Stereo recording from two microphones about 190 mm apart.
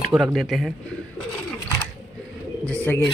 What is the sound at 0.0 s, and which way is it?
Speech, centre (ahead or behind).